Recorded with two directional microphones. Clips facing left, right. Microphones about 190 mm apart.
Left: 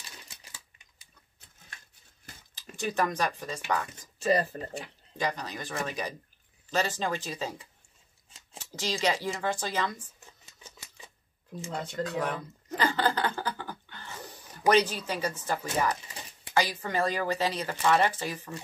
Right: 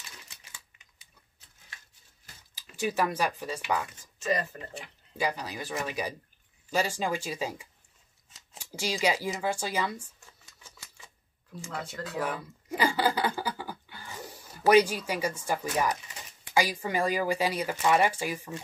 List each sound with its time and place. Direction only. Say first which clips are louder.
2.7 s speech: right 1 dB; 5° right (ahead or behind)
4.2 s speech: left 4 dB; 35° left (ahead or behind)
5.1 s speech: right 1 dB; 10° right (ahead or behind)
10.2 s typewriter: left 3 dB; 20° left (ahead or behind)
11.9 s a sound: left 2 dB; 5° right (ahead or behind)
14.7 s speech: right 3 dB; 10° right (ahead or behind)